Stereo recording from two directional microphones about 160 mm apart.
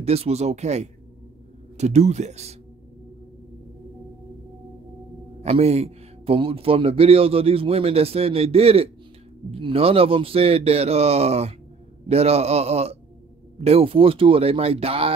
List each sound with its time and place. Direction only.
0.0 s speech: 40° right (ahead or behind)
5.4 s speech: 40° right (ahead or behind)